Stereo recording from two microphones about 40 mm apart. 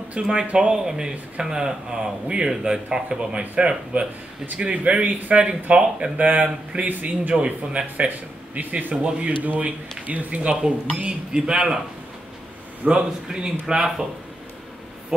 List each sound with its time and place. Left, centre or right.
0.2 s a man's voice: centre
6.1 s speech: right
8.5 s speech: right
8.9 s speech: right
9.4 s speech: right
12.8 s a man's voice: right